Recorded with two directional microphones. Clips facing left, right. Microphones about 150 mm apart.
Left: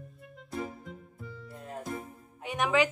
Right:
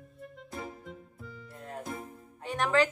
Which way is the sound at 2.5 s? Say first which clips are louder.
Even; 5° left (ahead or behind).